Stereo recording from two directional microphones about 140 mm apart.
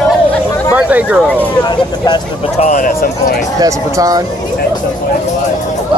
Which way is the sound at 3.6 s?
25° right (ahead or behind).